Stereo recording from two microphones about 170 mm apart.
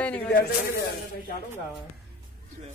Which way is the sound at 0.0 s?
10° left (ahead or behind).